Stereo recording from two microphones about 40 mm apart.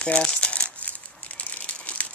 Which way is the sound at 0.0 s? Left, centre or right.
Left.